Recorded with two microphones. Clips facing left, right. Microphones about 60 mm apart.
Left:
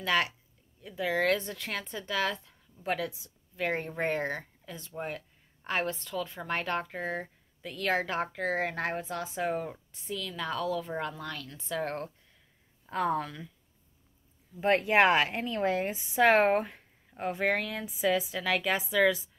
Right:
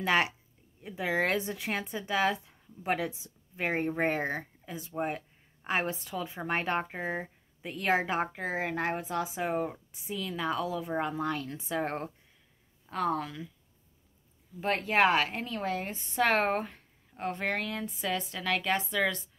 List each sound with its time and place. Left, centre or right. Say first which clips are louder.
0.0 s speech: right 1 dB; right
12.9 s speech: left 1 dB; centre
14.6 s speech: left 3 dB; centre